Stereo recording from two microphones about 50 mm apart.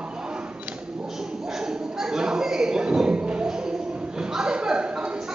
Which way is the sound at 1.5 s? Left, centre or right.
Centre.